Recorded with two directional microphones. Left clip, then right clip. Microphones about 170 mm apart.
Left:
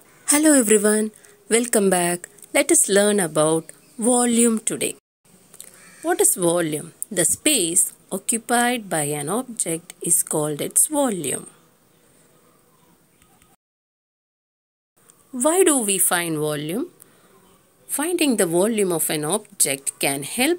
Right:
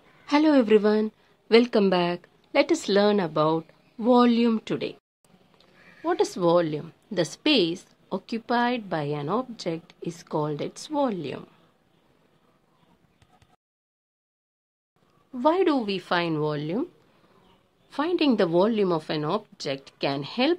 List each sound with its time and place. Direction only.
0.2 s a woman's voice: 25° left (ahead or behind)
15.3 s a woman's voice: 25° left (ahead or behind); by 16.8 s 10° left (ahead or behind)
17.8 s speech: centre (ahead or behind)